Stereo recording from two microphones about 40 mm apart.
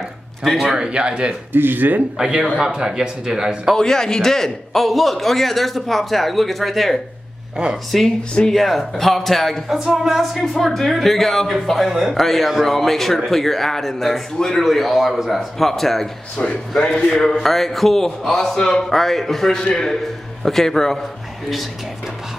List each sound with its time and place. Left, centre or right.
0.4 s speech: centre
0.7 s a man's voice: right
1.5 s speech: right
2.1 s speech: centre
3.7 s a man's voice: centre
4.8 s a man's voice: centre
8.2 s speech: centre
8.5 s a man's voice: centre
9.7 s speech: centre
10.3 s a man's voice: centre
16.8 s a man's voice: centre
19.6 s a man's voice: centre